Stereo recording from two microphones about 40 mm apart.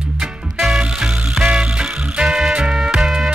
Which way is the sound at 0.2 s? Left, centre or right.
Centre.